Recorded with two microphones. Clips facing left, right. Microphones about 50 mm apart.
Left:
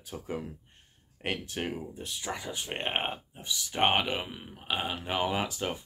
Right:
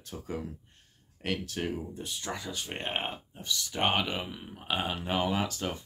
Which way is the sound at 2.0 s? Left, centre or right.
Centre.